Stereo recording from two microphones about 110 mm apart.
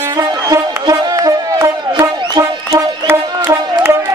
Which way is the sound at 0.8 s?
35° right (ahead or behind).